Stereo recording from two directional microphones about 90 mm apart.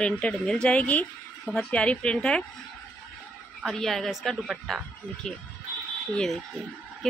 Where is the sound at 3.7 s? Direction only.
5° left (ahead or behind).